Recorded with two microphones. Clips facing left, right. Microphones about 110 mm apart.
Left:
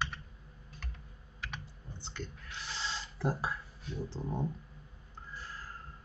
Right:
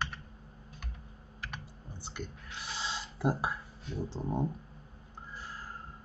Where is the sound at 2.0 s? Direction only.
15° right (ahead or behind).